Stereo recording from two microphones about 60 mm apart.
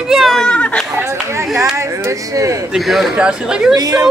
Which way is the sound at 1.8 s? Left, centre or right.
Right.